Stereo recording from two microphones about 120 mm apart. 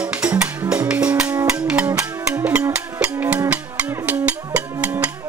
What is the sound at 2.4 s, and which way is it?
Music, 15° right (ahead or behind).